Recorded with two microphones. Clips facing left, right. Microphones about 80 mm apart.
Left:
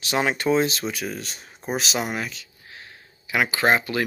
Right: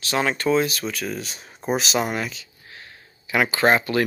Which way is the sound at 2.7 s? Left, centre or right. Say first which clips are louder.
Even; centre.